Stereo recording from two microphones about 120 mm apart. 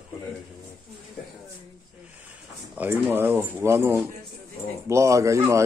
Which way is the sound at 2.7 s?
15° right (ahead or behind).